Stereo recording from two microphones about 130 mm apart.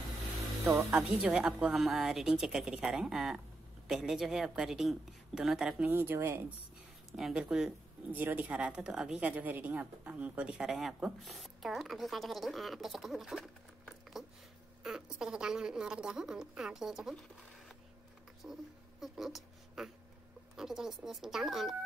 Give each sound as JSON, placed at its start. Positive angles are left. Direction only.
{"t": 0.9, "sound": "speech", "side_deg": -5}
{"t": 5.9, "sound": "speech", "side_deg": -20}
{"t": 7.2, "sound": "speech", "side_deg": -5}
{"t": 18.4, "sound": "speech", "side_deg": 0}